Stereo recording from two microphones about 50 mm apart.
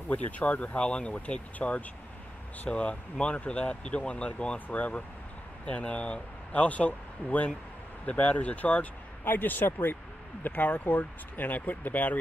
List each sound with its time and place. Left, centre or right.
0.1 s speech: left
9.2 s a man's voice: left